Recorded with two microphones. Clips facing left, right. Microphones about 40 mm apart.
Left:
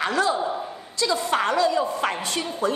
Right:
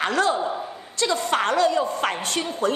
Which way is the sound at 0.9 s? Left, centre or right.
Right.